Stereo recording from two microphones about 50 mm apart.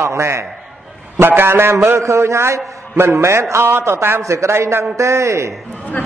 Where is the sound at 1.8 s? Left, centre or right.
Right.